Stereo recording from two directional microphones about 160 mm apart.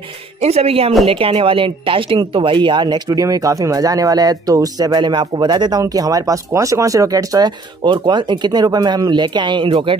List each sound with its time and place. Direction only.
0.4 s speech: 40° right (ahead or behind)